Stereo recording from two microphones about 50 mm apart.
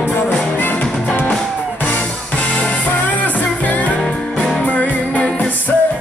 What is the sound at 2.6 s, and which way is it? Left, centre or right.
Music, left.